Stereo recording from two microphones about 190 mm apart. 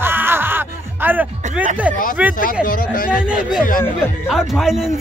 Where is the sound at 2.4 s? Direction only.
45° left (ahead or behind).